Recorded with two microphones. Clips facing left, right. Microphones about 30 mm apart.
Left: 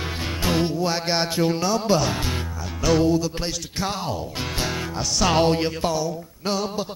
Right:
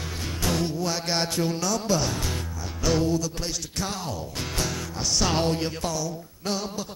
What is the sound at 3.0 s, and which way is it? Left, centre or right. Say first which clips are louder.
Mantra: left 5 dB; left.